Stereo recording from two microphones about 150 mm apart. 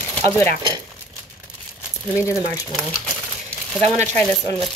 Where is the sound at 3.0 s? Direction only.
5° left (ahead or behind).